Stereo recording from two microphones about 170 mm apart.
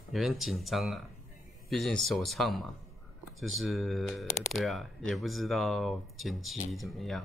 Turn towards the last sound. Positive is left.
turn(degrees=0)  # may be behind; listen again after turning